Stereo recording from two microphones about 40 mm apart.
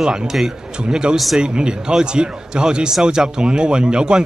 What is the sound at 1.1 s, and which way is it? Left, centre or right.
Speech, centre.